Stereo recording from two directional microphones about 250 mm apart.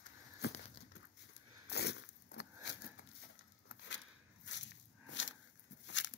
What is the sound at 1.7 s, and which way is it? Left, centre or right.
Biting, left.